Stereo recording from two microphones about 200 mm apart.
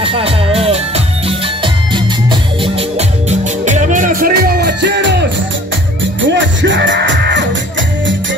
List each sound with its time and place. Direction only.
0.0 s music: 30° right (ahead or behind)
2.6 s music: 35° right (ahead or behind); by 5.2 s 60° right (ahead or behind)
6.2 s music: 65° right (ahead or behind)